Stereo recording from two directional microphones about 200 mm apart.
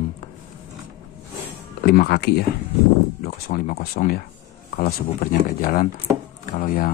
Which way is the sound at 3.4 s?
45° left (ahead or behind).